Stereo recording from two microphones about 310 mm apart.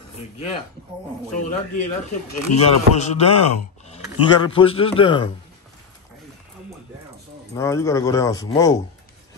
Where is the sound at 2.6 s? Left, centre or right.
Left.